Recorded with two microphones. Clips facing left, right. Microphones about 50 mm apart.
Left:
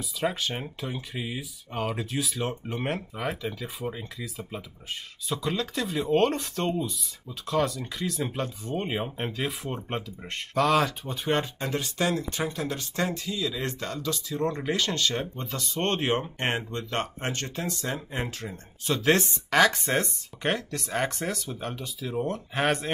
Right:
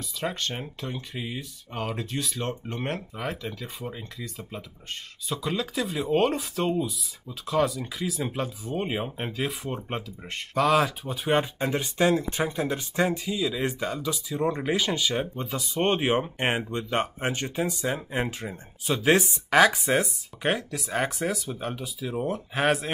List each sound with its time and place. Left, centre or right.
0.2 s speech: centre